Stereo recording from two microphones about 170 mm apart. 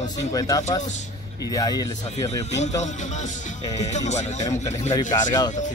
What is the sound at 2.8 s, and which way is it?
Music, 45° left (ahead or behind).